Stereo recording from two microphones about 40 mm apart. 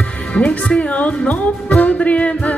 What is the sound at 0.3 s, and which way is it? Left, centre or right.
Speech, left.